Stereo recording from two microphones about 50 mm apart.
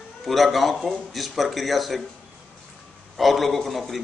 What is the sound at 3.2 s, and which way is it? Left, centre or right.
Speech, centre.